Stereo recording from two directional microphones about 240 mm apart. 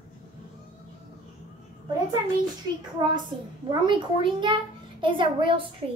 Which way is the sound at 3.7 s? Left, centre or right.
Centre.